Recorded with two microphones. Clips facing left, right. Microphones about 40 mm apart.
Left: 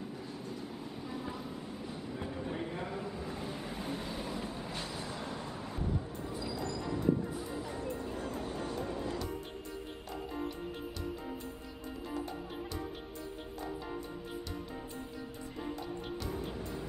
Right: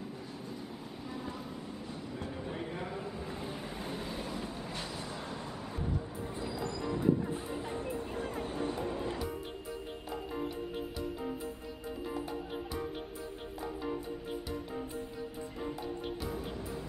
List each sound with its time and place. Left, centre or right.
0.5 s train: centre
2.3 s vehicle: centre
5.8 s music: centre
6.2 s music: right
6.8 s music: centre
7.4 s music: right
8.0 s music: centre
12.1 s music: centre
16.2 s music: centre